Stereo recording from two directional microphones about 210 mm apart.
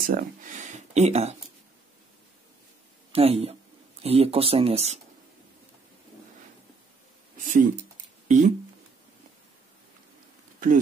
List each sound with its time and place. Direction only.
0.0 s a sound: 40° right (ahead or behind)
3.1 s speech: 30° right (ahead or behind)
7.3 s speech: 35° right (ahead or behind)